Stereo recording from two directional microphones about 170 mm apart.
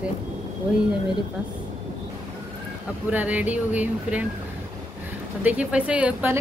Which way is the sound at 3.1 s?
10° right (ahead or behind).